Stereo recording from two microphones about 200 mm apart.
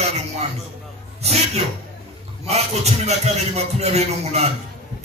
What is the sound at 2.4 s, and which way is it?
A man's voice, 30° right (ahead or behind).